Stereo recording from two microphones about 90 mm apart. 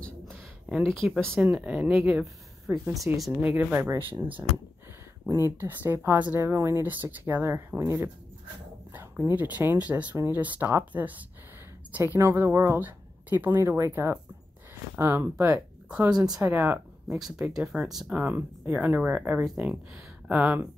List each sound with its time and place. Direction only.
0.8 s speech: centre (ahead or behind)
1.4 s speech: 15° right (ahead or behind)
3.3 s a woman's voice: 20° right (ahead or behind)
9.3 s a woman's voice: 20° right (ahead or behind)
12.0 s a woman's voice: 30° right (ahead or behind)
16.2 s speech: 40° right (ahead or behind)
16.4 s speech: 20° right (ahead or behind)
17.2 s speech: 5° right (ahead or behind)
18.1 s a woman's voice: 20° right (ahead or behind)